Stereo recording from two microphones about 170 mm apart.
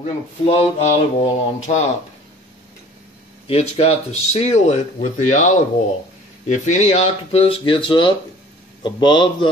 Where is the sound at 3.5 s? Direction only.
35° left (ahead or behind).